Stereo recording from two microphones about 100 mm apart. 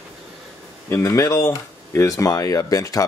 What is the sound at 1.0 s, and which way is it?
Speech, 35° left (ahead or behind).